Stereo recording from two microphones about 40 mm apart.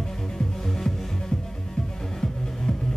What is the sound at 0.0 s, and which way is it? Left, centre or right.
Music, centre.